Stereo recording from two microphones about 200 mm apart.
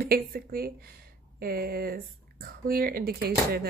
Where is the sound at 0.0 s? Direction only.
50° right (ahead or behind).